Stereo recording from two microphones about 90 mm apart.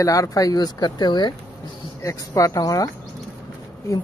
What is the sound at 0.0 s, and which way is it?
Speech, 40° left (ahead or behind).